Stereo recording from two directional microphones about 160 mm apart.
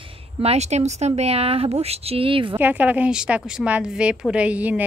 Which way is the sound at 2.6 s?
10° right (ahead or behind).